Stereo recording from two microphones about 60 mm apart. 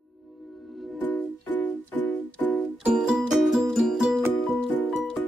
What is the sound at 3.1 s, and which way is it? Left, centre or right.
Music, centre.